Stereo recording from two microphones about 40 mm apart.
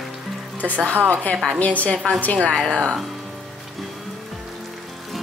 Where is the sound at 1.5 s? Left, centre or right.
Left.